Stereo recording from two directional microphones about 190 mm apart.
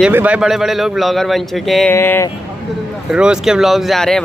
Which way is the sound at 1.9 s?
15° left (ahead or behind).